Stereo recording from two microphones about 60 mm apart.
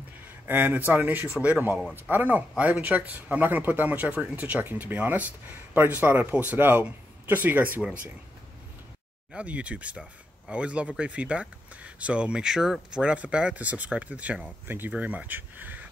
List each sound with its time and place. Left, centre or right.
0.5 s speech: right
9.3 s speech: right